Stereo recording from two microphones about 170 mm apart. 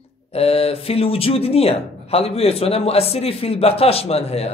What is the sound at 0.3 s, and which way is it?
Speech, 35° left (ahead or behind).